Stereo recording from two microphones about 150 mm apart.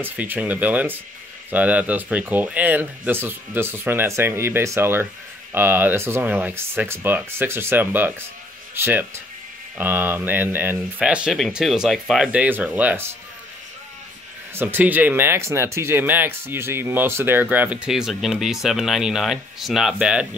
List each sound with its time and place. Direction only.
0.0 s speech: 10° right (ahead or behind)
14.5 s speech: 15° right (ahead or behind)